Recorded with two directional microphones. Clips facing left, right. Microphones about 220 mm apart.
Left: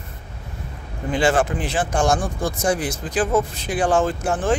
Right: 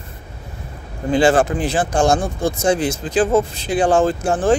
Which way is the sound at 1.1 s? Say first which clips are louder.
Right 5 dB; 35° right (ahead or behind).